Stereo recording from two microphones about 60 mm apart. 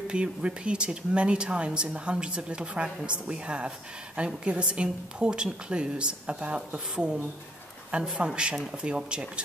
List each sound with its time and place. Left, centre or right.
0.1 s a woman's voice: centre